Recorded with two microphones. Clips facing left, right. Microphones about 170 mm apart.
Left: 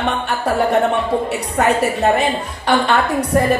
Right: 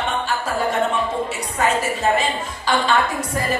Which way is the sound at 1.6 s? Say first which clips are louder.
Left 5 dB; 60° left (ahead or behind).